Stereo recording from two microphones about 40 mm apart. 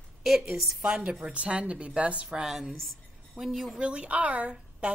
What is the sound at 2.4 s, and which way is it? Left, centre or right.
Speech, centre.